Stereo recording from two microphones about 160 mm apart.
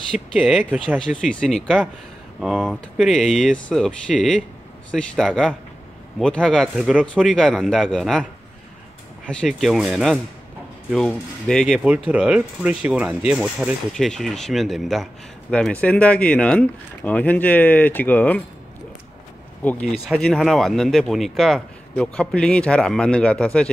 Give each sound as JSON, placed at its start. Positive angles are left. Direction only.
{"t": 0.1, "sound": "speech", "side_deg": 0}
{"t": 9.3, "sound": "speech", "side_deg": 0}
{"t": 11.8, "sound": "speech", "side_deg": -10}
{"t": 19.6, "sound": "speech", "side_deg": 10}